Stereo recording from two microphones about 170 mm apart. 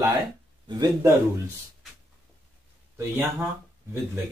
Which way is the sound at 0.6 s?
20° right (ahead or behind).